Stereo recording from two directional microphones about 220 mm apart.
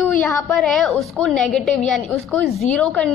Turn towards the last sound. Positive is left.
turn(degrees=5)  # may be behind; listen again after turning